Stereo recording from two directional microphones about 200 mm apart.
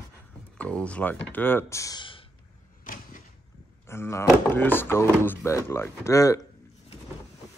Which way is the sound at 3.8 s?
15° left (ahead or behind).